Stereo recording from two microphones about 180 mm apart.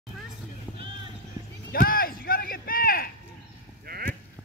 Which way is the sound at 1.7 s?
55° left (ahead or behind).